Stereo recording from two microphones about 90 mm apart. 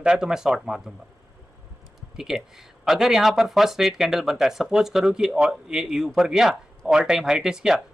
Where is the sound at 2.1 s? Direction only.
5° right (ahead or behind).